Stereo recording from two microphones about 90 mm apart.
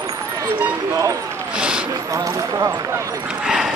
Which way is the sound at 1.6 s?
10° right (ahead or behind).